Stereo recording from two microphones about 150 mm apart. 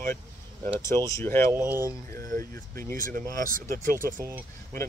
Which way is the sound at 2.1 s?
20° left (ahead or behind).